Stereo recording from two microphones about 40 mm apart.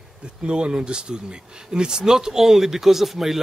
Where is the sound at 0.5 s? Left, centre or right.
Right.